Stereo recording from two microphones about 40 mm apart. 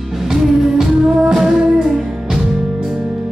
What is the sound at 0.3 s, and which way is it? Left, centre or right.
Music, centre.